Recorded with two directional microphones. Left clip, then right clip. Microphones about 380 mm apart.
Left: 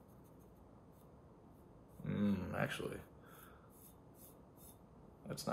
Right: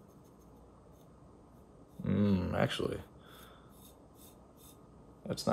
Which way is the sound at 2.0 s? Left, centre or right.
Right.